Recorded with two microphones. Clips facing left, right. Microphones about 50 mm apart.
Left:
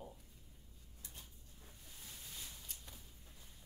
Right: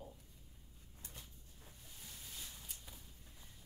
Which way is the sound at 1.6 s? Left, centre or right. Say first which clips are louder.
Even; centre.